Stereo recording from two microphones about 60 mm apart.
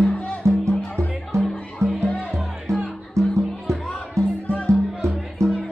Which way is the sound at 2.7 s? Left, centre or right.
Right.